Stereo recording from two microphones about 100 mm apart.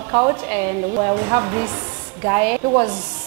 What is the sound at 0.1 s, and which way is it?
A woman's voice, 35° right (ahead or behind).